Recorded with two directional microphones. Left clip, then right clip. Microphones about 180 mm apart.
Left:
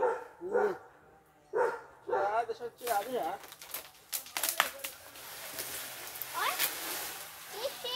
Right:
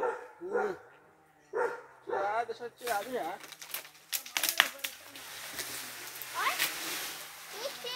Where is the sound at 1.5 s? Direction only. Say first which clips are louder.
Left 2 dB; 35° left (ahead or behind).